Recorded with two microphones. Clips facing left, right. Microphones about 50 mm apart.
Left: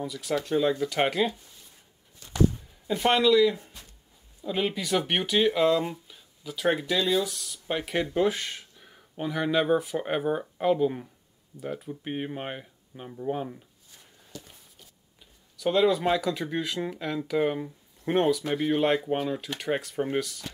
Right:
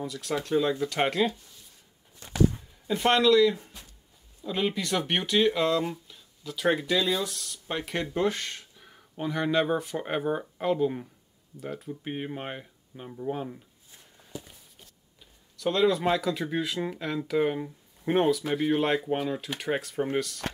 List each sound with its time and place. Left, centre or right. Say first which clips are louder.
0.0 s speech: left 2 dB; centre
2.9 s speech: even; centre
13.9 s a sound: right 3 dB; centre
15.5 s speech: left 1 dB; centre